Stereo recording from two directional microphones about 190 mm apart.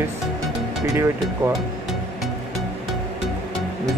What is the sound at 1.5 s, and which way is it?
Music, centre (ahead or behind).